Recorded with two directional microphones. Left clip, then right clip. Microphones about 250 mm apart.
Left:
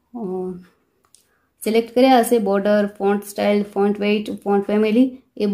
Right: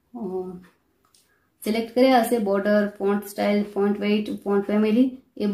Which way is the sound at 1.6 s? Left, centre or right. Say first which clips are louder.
Left 5 dB; left.